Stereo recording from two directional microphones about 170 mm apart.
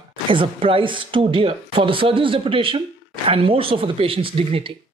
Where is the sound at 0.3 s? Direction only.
30° right (ahead or behind).